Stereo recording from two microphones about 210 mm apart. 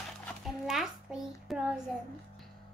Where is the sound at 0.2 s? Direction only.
Centre (ahead or behind).